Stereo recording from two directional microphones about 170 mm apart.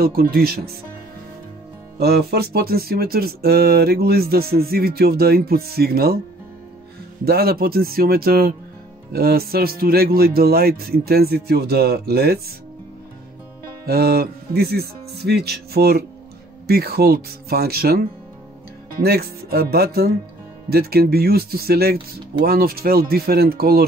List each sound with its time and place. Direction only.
0.0 s speech: 60° right (ahead or behind)
2.0 s speech: 70° right (ahead or behind)
7.2 s speech: 65° right (ahead or behind)
13.8 s speech: 65° right (ahead or behind)
19.0 s speech: 65° right (ahead or behind)